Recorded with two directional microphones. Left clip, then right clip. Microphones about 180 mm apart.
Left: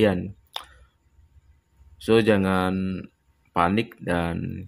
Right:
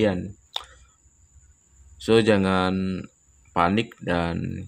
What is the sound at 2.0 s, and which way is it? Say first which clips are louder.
Speech: right 1 dB; centre (ahead or behind).